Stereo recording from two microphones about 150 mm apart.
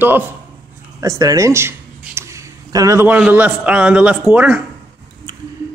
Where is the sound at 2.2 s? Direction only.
20° right (ahead or behind).